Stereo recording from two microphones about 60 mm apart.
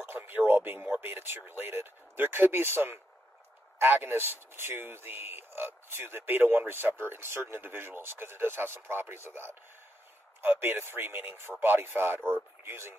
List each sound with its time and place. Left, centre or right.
0.0 s radio: right
0.5 s speech: right